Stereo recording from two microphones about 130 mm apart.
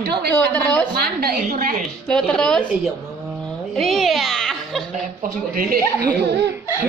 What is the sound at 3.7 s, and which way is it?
Giggle, centre (ahead or behind).